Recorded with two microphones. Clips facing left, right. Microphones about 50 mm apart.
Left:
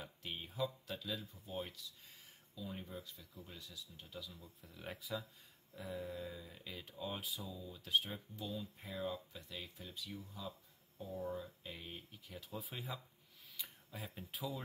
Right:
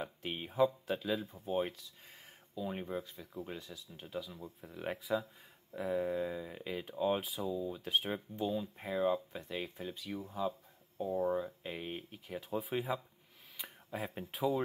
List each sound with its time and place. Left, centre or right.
0.0 s a sound: right
0.7 s speech: right
5.7 s speech: right
12.4 s speech: right
13.6 s a sound: right
13.9 s speech: right